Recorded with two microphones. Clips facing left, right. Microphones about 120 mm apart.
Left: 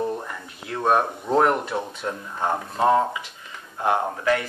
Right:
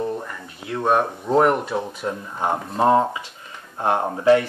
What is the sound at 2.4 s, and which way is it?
Speech, 25° right (ahead or behind).